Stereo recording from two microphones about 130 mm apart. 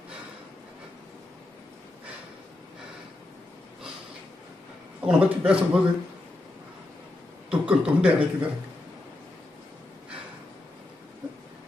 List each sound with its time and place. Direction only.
5.0 s a man's voice: 10° right (ahead or behind)
7.4 s speech: 10° right (ahead or behind)